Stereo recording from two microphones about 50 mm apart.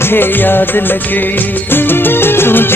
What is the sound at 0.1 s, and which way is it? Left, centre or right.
Music, left.